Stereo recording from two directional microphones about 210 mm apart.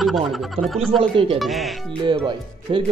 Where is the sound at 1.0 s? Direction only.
25° right (ahead or behind).